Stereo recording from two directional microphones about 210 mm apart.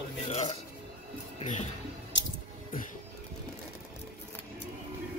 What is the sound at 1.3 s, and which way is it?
Music, 35° left (ahead or behind).